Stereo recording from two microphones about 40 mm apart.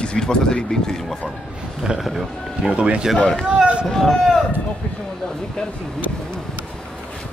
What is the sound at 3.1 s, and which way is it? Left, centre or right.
Speech, left.